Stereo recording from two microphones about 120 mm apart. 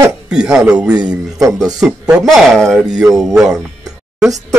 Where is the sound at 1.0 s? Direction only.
30° right (ahead or behind).